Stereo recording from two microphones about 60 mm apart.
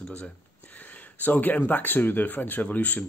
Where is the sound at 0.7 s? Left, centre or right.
Left.